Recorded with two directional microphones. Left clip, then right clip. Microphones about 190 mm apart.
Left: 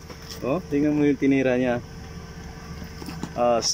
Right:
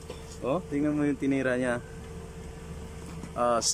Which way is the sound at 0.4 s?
5° left (ahead or behind).